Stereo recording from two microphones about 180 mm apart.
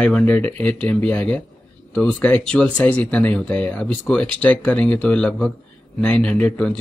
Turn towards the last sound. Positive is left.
turn(degrees=5)  # may be behind; listen again after turning